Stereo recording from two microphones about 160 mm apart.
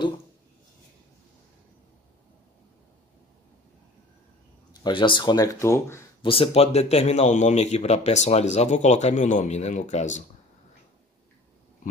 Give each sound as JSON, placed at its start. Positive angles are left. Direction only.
{"t": 4.8, "sound": "speech", "side_deg": 30}
{"t": 6.2, "sound": "speech", "side_deg": 35}